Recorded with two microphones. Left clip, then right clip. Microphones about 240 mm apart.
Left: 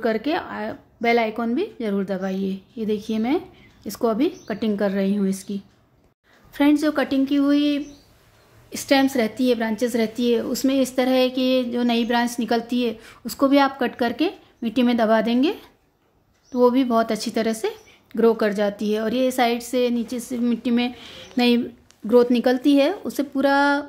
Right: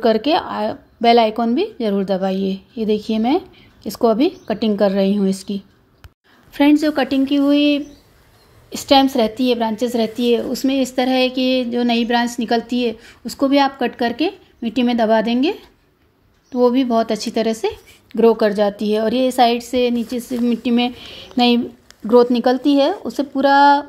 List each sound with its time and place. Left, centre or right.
0.0 s a woman's voice: centre